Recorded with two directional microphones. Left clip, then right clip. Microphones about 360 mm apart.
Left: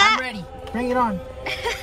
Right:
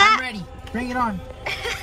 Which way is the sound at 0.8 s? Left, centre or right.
Centre.